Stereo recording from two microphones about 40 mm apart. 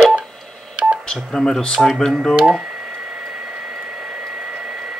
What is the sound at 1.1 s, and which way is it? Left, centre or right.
Speech, centre.